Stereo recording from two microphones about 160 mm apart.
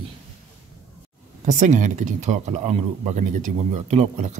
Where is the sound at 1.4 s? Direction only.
50° right (ahead or behind).